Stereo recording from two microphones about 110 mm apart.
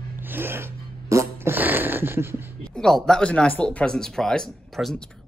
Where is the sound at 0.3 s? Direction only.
20° right (ahead or behind).